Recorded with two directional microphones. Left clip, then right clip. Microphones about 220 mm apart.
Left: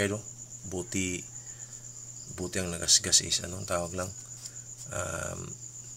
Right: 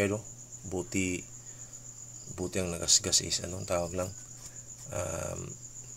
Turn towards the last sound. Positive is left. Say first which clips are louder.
# left 1 dB
turn(degrees=-5)  # may be behind; listen again after turning